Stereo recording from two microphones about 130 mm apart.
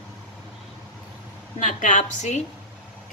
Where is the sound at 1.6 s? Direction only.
80° left.